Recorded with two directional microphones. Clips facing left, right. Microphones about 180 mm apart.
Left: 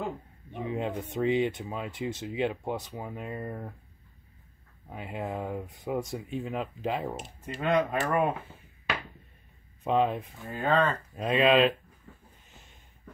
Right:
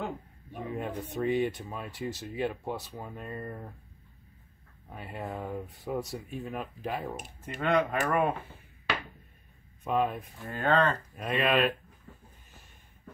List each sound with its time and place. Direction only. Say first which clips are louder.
0.5 s speech: left 3 dB; 20° left (ahead or behind)
4.8 s speech: left 3 dB; 15° left (ahead or behind)
7.4 s speech: left 1 dB; centre (ahead or behind)
9.8 s speech: left 3 dB; 25° left (ahead or behind)
10.4 s speech: even; centre (ahead or behind)
11.1 s speech: left 6 dB; 25° left (ahead or behind)